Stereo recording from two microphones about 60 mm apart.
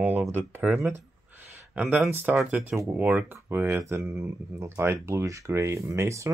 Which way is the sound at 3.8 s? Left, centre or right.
Right.